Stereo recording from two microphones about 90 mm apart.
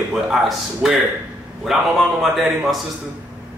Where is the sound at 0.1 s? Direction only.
5° right (ahead or behind).